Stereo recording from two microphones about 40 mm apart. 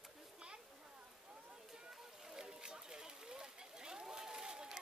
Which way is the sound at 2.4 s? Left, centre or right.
Centre.